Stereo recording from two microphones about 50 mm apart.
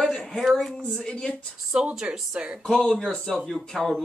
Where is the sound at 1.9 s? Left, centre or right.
Right.